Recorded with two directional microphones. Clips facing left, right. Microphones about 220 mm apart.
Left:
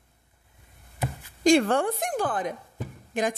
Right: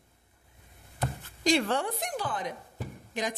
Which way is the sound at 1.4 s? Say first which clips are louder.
Left 6 dB; 50° left (ahead or behind).